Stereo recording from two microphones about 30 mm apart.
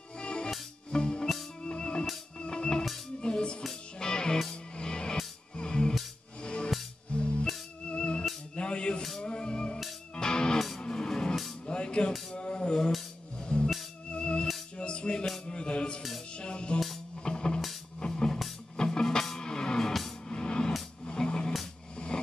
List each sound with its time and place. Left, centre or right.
0.2 s music: left
6.4 s music: left
11.6 s music: left
21.9 s a sound: left